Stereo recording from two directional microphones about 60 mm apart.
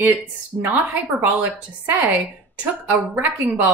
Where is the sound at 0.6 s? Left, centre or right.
Right.